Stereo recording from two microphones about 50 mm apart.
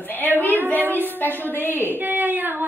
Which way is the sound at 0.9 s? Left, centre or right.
Right.